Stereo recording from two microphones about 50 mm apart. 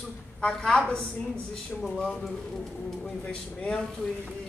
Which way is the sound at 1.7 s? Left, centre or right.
Centre.